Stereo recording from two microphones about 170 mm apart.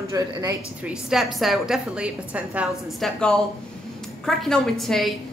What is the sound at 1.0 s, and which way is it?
A woman's voice, centre (ahead or behind).